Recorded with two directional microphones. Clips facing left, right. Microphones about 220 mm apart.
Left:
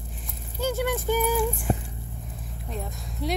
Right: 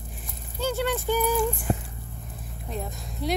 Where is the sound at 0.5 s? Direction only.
10° left (ahead or behind).